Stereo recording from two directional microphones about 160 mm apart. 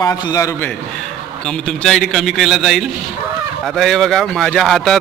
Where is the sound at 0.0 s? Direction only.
20° left (ahead or behind).